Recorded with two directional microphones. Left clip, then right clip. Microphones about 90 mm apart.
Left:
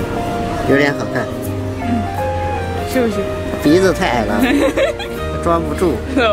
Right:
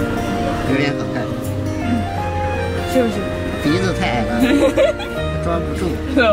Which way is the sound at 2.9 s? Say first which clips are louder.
Even; 5° right (ahead or behind).